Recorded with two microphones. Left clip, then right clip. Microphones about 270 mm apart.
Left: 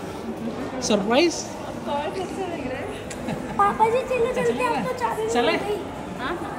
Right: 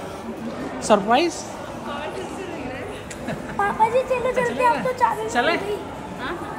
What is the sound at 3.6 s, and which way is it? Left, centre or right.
A woman's voice, centre.